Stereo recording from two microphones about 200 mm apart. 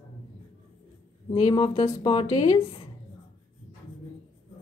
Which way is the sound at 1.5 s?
25° left (ahead or behind).